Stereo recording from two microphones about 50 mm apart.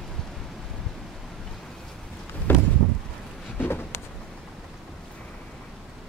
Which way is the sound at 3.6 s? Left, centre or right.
Left.